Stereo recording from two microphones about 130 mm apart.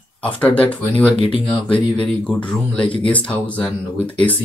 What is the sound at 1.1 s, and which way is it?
Speech, 40° left (ahead or behind).